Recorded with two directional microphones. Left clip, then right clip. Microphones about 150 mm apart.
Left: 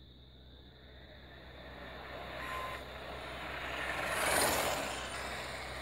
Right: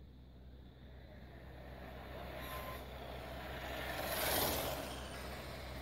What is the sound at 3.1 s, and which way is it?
Vehicle, 25° right (ahead or behind).